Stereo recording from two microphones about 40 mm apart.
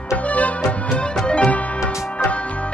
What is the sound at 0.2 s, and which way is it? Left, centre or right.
Music, left.